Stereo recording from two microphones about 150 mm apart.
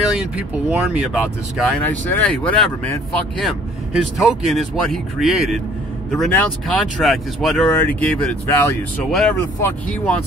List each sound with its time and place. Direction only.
0.1 s speech: 5° right (ahead or behind)
1.8 s speech: 10° left (ahead or behind)
4.2 s speech: centre (ahead or behind)
7.7 s speech: 10° left (ahead or behind)